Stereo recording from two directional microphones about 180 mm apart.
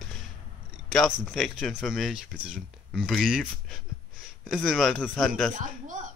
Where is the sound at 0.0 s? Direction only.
Centre (ahead or behind).